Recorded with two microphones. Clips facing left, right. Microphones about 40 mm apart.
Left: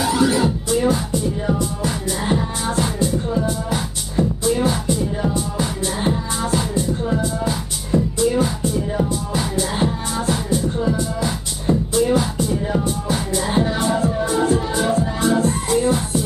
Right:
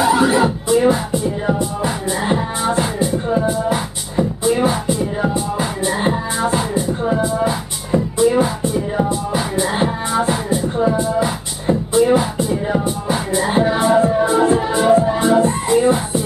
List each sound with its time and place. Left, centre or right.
0.0 s music: right